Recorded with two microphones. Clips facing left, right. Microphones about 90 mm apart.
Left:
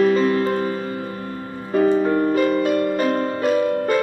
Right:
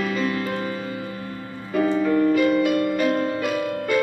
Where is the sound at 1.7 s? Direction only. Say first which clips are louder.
Left 3 dB; 35° left (ahead or behind).